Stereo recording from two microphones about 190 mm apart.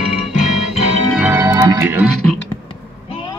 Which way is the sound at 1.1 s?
10° right (ahead or behind).